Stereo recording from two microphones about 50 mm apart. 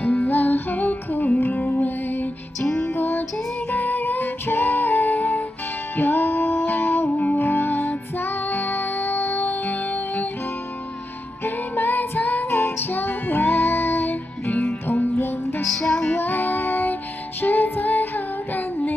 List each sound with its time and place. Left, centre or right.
0.0 s music: left
2.6 s music: centre
2.9 s music: left
3.7 s music: left
11.4 s music: left
15.6 s music: centre
16.1 s music: left
17.4 s female singing: left